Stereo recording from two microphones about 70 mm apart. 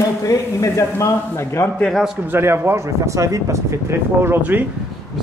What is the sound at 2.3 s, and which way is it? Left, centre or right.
Speech, right.